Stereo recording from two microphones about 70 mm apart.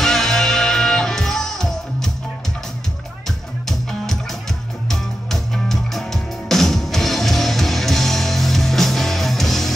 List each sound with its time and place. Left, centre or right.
0.0 s music: centre
3.3 s music: centre